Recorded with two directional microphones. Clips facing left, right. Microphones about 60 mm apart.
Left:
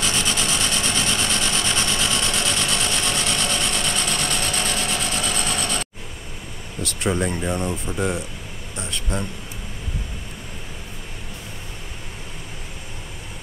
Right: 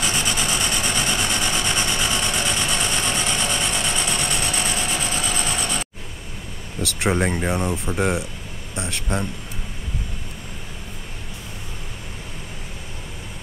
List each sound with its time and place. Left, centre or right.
0.0 s vehicle: centre
7.1 s speech: right
7.5 s speech: centre